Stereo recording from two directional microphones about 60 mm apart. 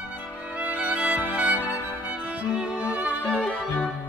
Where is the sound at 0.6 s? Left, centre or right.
Right.